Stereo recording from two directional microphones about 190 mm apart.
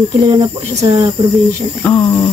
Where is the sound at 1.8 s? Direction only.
10° left (ahead or behind).